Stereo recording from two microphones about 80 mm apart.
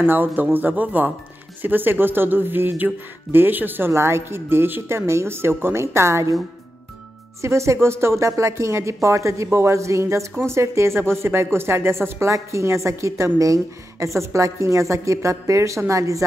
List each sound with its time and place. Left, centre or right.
0.0 s speech: right
7.4 s a woman's voice: right